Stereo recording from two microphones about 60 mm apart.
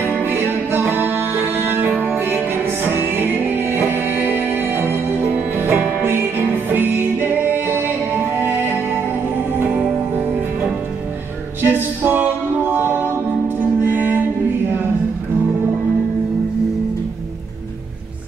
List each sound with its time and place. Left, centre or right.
0.2 s music: right
11.6 s music: right